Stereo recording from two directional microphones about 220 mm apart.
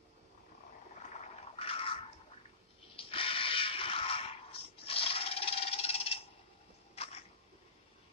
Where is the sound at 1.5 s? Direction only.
25° left (ahead or behind).